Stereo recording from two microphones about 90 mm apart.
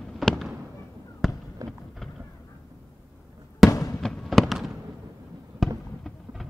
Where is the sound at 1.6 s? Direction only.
Centre (ahead or behind).